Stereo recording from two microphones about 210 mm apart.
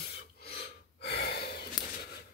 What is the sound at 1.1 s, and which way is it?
Sigh, 50° left (ahead or behind).